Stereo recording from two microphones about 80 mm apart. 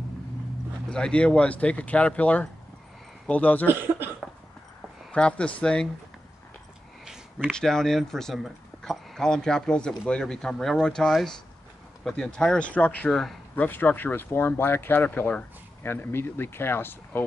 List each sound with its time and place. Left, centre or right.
0.8 s speech: centre
3.6 s speech: right
5.1 s speech: centre
7.5 s speech: centre; by 17.2 s left